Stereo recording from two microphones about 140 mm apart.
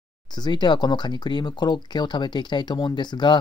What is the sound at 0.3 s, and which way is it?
Speech, 30° left (ahead or behind).